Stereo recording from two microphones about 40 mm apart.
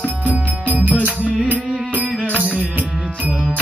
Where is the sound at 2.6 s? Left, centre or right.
Right.